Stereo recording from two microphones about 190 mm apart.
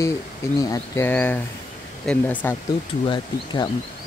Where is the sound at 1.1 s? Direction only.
10° left (ahead or behind).